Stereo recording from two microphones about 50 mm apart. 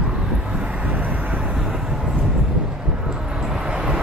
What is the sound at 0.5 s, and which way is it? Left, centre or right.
Vehicle, right.